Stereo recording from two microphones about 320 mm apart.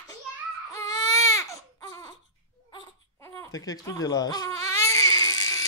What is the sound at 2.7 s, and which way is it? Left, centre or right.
Crying, centre.